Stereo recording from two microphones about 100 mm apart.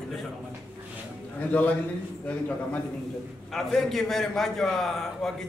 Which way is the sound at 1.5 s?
15° left (ahead or behind).